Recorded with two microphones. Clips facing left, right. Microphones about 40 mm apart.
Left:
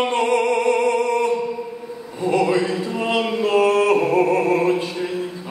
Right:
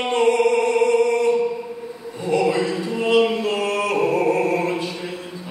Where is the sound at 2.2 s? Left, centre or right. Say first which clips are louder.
Left 1 dB; left.